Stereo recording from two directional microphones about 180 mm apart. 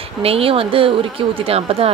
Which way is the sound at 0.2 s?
30° right (ahead or behind).